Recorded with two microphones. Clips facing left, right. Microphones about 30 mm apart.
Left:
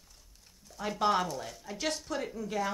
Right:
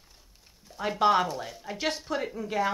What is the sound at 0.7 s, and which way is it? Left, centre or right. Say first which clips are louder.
Speech: right 5 dB; right.